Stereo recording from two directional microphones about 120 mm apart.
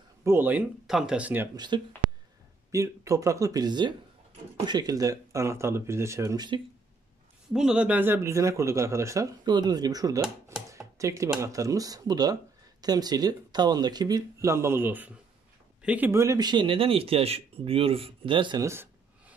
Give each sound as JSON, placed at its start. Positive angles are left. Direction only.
{"t": 0.2, "sound": "speech", "side_deg": -20}
{"t": 1.7, "sound": "speech", "side_deg": -40}
{"t": 2.7, "sound": "speech", "side_deg": -25}
{"t": 7.5, "sound": "speech", "side_deg": -5}
{"t": 9.4, "sound": "speech", "side_deg": -35}
{"t": 16.1, "sound": "speech", "side_deg": -25}
{"t": 16.4, "sound": "speech", "side_deg": -45}
{"t": 18.6, "sound": "a sound", "side_deg": -20}